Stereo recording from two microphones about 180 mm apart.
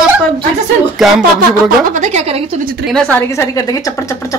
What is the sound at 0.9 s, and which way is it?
Speech, centre (ahead or behind).